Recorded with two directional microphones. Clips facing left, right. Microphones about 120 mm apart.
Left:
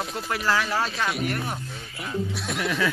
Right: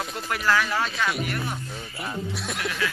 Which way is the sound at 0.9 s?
Centre (ahead or behind).